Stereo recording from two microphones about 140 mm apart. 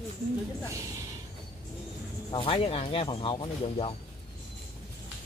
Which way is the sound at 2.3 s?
40° left (ahead or behind).